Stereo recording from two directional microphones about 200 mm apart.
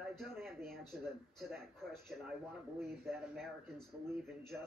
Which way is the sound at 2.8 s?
Centre (ahead or behind).